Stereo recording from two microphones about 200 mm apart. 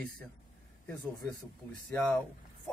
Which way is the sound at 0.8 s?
5° left (ahead or behind).